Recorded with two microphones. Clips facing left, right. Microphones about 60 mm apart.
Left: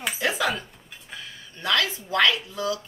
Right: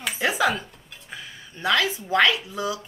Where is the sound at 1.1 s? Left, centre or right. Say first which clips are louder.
Right 1 dB; centre.